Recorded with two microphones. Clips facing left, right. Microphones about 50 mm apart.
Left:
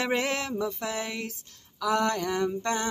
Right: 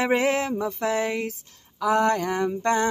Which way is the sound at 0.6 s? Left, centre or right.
Right.